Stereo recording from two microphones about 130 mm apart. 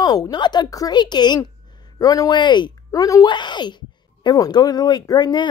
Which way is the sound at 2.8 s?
25° left (ahead or behind).